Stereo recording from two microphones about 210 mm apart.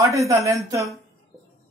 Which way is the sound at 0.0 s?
15° right (ahead or behind).